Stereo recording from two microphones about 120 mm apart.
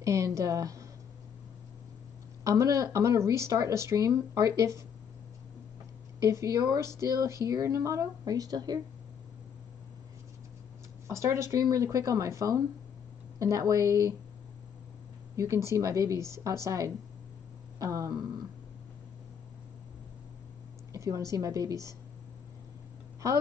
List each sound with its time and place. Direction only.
0.0 s speech: 25° right (ahead or behind)
2.4 s speech: 25° right (ahead or behind)
6.1 s speech: 25° right (ahead or behind)
11.1 s speech: 25° right (ahead or behind)
15.3 s speech: 25° right (ahead or behind)
17.7 s a sound: 25° right (ahead or behind)
20.9 s speech: 25° right (ahead or behind)